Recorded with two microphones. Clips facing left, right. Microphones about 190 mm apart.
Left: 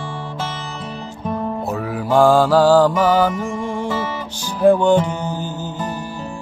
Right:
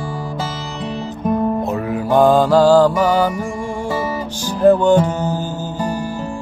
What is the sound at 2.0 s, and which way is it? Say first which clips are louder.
Mantra: right 1 dB; 15° right (ahead or behind).